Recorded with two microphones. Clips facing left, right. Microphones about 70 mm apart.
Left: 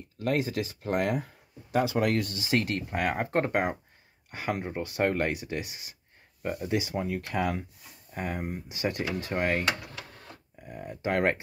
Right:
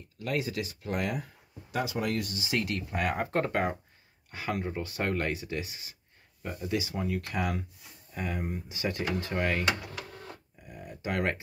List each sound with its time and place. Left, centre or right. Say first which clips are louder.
0.2 s speech: left 4 dB; left
3.0 s speech: left 1 dB; left
6.7 s speech: even; left
10.7 s speech: left 5 dB; left